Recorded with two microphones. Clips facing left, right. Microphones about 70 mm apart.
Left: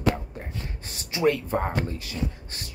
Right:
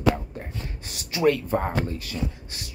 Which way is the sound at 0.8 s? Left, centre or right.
Left.